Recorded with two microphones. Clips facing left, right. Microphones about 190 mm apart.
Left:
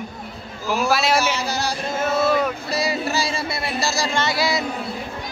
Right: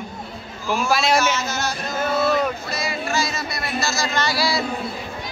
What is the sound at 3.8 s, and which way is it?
Speech, 35° left (ahead or behind).